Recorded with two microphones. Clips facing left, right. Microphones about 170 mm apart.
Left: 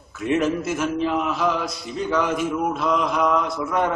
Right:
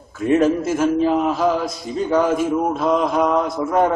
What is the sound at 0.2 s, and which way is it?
A man's voice, 45° right (ahead or behind).